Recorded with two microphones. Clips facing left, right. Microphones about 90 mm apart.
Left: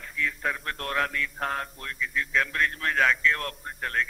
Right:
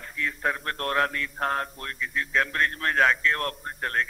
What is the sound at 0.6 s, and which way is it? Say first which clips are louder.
Speech: right 3 dB; centre (ahead or behind).